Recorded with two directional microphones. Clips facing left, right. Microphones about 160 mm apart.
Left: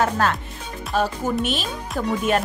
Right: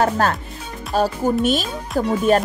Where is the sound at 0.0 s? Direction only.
40° right (ahead or behind).